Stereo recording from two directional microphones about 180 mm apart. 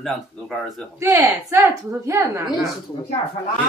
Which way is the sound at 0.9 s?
15° right (ahead or behind).